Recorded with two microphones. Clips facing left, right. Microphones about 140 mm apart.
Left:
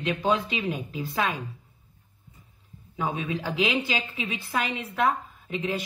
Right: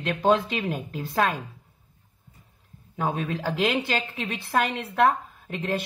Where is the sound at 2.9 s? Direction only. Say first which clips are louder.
Right 2 dB; 50° right (ahead or behind).